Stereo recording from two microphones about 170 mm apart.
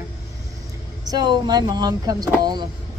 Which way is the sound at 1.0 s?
25° right (ahead or behind).